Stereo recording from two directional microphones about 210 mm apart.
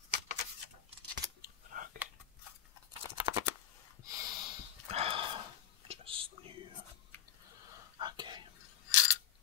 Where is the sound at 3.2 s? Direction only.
15° right (ahead or behind).